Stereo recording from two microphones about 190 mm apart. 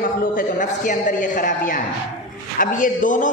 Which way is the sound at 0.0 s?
45° left (ahead or behind).